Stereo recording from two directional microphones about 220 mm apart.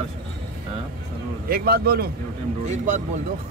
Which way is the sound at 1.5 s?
45° right (ahead or behind).